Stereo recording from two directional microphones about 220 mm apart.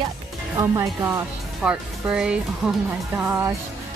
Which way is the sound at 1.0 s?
10° right (ahead or behind).